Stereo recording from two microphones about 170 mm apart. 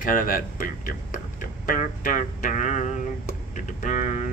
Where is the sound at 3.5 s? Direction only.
50° left (ahead or behind).